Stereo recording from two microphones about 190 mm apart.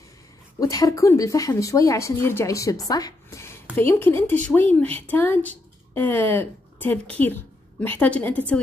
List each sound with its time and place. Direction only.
0.6 s a woman's voice: 20° left (ahead or behind)